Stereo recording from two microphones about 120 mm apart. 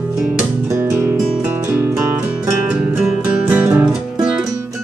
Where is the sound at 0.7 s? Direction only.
20° right (ahead or behind).